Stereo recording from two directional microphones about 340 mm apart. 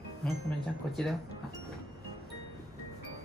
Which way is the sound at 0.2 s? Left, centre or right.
Centre.